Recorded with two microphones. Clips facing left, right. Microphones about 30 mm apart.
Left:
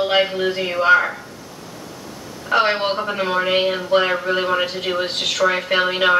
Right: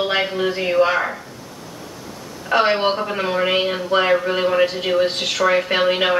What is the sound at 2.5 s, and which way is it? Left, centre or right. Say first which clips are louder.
Speech: right 1 dB; centre.